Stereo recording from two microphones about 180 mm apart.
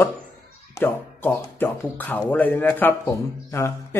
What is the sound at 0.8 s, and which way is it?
Speech, 10° left (ahead or behind).